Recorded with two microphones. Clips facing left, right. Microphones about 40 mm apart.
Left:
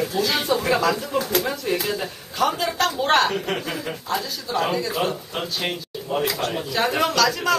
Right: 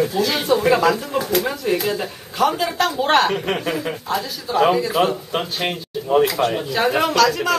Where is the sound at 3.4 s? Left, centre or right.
Right.